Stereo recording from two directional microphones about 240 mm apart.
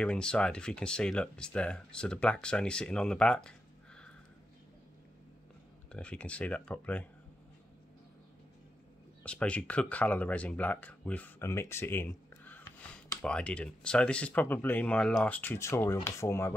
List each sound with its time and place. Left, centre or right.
0.0 s speech: centre
5.9 s speech: centre
9.2 s speech: centre